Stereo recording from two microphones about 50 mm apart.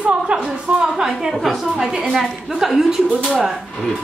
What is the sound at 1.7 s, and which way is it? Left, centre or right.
A woman's voice, centre.